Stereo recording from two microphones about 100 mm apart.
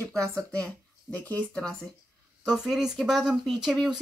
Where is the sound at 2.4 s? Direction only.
5° right (ahead or behind).